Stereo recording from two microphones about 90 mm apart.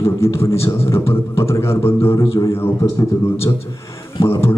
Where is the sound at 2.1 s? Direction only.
40° left (ahead or behind).